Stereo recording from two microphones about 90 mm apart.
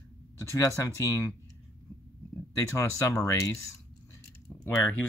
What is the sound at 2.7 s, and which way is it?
Speech, 35° left (ahead or behind).